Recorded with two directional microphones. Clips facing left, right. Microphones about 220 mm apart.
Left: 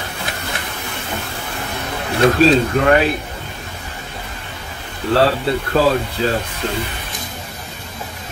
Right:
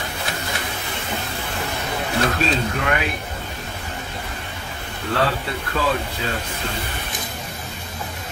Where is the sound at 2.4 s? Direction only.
35° left (ahead or behind).